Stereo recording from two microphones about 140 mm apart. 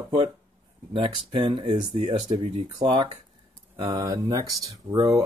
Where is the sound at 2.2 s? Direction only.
45° right (ahead or behind); by 5.2 s 25° right (ahead or behind).